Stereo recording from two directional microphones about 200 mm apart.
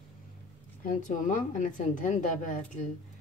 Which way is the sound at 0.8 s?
40° left (ahead or behind).